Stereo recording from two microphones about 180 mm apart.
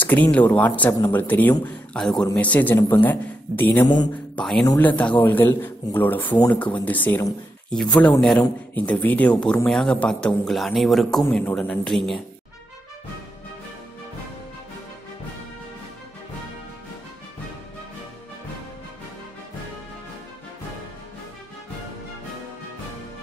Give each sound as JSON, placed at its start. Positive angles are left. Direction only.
{"t": 0.0, "sound": "a man's voice", "side_deg": 10}
{"t": 3.8, "sound": "speech", "side_deg": 25}
{"t": 4.4, "sound": "a man's voice", "side_deg": 5}